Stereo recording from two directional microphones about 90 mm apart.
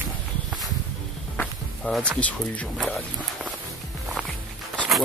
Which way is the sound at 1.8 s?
15° left (ahead or behind).